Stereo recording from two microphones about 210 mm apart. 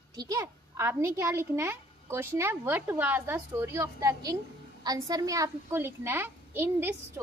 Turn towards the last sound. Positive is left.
turn(degrees=-10)  # may be behind; listen again after turning